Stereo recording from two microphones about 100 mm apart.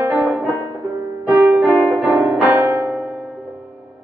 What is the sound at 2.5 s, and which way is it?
Music, 30° right (ahead or behind).